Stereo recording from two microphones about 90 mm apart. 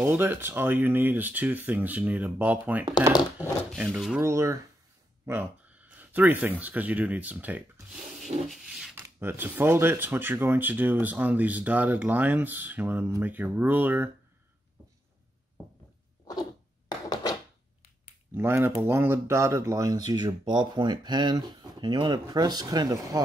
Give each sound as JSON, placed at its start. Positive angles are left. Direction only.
{"t": 0.0, "sound": "speech", "side_deg": -25}
{"t": 4.2, "sound": "speech", "side_deg": -30}
{"t": 5.2, "sound": "speech", "side_deg": -20}
{"t": 7.9, "sound": "a sound", "side_deg": -5}
{"t": 8.9, "sound": "speech", "side_deg": -25}
{"t": 17.1, "sound": "a sound", "side_deg": 45}
{"t": 18.3, "sound": "speech", "side_deg": -25}